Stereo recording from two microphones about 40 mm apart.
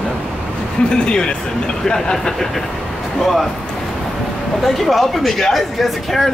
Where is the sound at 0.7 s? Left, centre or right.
Left; by 3.4 s centre.